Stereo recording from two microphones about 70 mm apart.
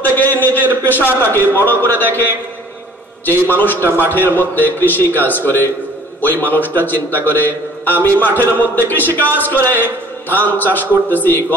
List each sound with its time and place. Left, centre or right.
0.0 s a sound: left
0.8 s a man's voice: left
3.5 s a man's voice: left